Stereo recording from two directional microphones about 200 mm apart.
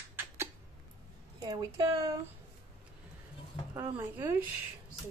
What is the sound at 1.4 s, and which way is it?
Speech, 20° right (ahead or behind).